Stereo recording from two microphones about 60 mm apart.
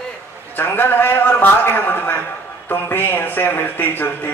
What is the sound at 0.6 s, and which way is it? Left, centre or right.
Speech, left.